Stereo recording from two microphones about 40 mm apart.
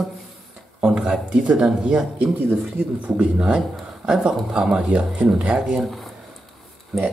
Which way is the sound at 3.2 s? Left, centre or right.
Right.